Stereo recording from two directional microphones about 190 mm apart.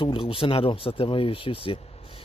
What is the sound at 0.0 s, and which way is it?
Speech, 25° left (ahead or behind).